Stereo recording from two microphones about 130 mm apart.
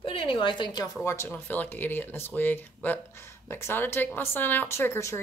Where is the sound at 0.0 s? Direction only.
45° left (ahead or behind).